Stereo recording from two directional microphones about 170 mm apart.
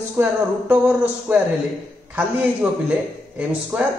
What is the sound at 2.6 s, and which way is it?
Speech, 10° right (ahead or behind).